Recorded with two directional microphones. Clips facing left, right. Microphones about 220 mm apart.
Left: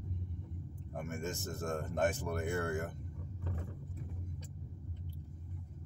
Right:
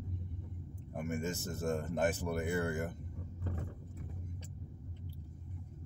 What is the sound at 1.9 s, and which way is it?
Speech, 5° right (ahead or behind).